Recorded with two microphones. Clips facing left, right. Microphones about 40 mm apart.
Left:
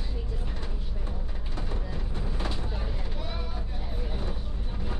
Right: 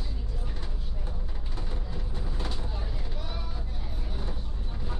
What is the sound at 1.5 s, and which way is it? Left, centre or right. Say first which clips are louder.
Vehicle: left 3 dB; centre.